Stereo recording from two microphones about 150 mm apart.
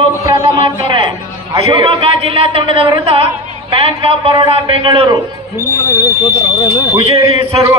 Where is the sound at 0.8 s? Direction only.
35° right (ahead or behind).